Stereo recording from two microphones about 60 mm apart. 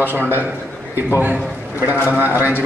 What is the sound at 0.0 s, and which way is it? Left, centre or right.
A man's voice, right.